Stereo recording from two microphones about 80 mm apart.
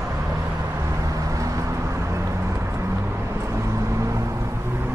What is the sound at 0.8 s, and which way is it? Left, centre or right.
Vehicle, right.